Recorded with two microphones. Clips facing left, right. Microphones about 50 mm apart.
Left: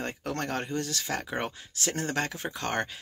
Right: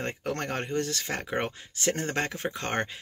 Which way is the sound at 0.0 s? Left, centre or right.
Right.